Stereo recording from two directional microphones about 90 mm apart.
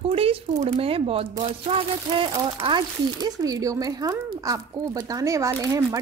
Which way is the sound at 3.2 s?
45° right (ahead or behind).